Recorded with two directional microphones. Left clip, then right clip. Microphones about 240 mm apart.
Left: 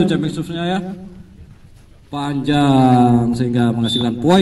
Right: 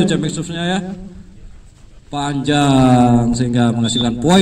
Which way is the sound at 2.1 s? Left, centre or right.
Right.